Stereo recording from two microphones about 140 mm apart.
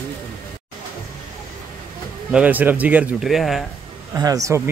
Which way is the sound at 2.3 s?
10° right (ahead or behind).